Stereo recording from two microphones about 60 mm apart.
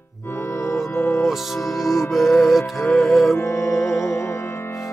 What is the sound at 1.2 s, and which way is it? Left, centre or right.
Music, centre.